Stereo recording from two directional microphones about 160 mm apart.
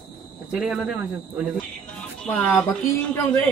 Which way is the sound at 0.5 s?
5° right (ahead or behind).